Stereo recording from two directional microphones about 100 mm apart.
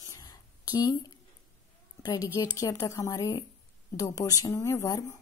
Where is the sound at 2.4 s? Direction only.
40° left (ahead or behind).